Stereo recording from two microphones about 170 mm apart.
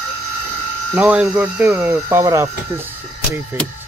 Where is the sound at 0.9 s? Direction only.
5° right (ahead or behind).